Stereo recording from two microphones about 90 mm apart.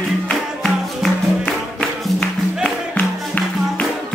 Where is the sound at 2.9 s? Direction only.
20° left (ahead or behind).